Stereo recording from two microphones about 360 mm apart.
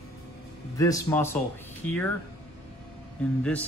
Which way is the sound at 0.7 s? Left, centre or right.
Centre.